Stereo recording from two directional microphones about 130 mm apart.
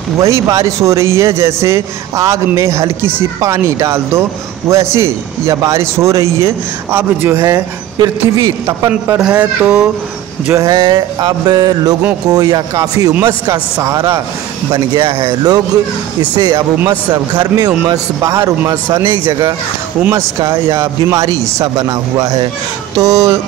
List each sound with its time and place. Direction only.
0.2 s a man's voice: 25° right (ahead or behind)
7.4 s music: 30° right (ahead or behind)
8.6 s speech: 20° right (ahead or behind)
10.5 s music: 30° right (ahead or behind)
12.3 s a man's voice: 30° right (ahead or behind)
16.3 s music: 30° right (ahead or behind)
17.6 s a man's voice: 30° right (ahead or behind)